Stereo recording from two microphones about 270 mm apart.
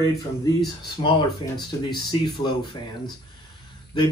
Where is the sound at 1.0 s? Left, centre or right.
Left.